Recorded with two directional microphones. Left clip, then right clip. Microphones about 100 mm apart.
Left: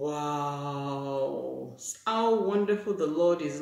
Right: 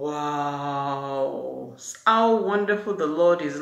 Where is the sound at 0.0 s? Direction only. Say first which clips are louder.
Right 4 dB; 20° left (ahead or behind).